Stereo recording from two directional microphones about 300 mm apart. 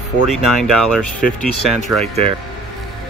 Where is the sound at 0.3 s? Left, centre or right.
Centre.